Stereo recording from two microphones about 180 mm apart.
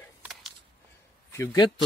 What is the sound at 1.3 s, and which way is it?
Speech, 15° left (ahead or behind).